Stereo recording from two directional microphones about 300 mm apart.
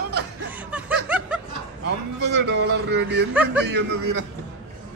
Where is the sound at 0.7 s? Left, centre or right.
Centre.